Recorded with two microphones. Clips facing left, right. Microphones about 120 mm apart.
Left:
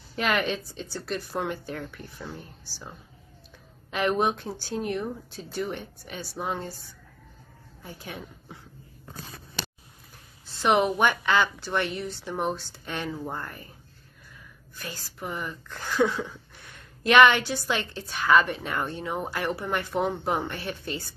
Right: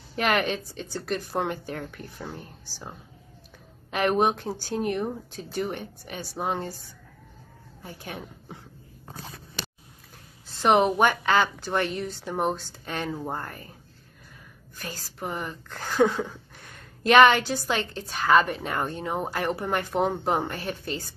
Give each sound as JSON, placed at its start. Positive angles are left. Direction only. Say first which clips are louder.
{"t": 0.2, "sound": "speech", "louder": "right 2 dB", "side_deg": -45}
{"t": 3.9, "sound": "speech", "louder": "right 2 dB", "side_deg": -50}
{"t": 7.8, "sound": "speech", "louder": "right 1 dB", "side_deg": -45}
{"t": 10.5, "sound": "speech", "louder": "right 2 dB", "side_deg": -35}
{"t": 14.8, "sound": "speech", "louder": "right 2 dB", "side_deg": -40}